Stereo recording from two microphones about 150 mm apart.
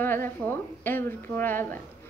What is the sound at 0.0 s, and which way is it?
Speech, 15° left (ahead or behind).